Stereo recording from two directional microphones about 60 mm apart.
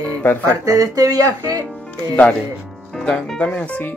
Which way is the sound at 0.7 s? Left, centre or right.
Right.